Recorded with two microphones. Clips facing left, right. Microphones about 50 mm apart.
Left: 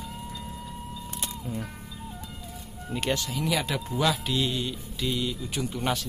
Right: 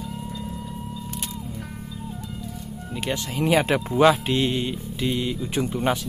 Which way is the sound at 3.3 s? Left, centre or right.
Right.